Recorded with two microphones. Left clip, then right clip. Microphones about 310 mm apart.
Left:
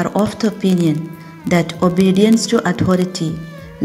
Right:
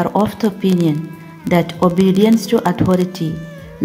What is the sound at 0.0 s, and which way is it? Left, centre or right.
Speech, centre.